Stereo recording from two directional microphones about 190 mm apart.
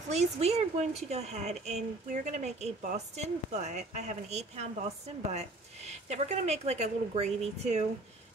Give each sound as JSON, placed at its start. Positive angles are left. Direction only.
{"t": 0.1, "sound": "speech", "side_deg": -35}